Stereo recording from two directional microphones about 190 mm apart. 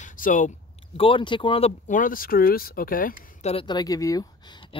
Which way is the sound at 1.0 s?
25° left (ahead or behind).